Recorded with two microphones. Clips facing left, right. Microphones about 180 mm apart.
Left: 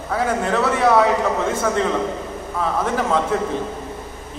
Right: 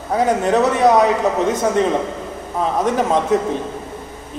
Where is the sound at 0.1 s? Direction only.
20° right (ahead or behind).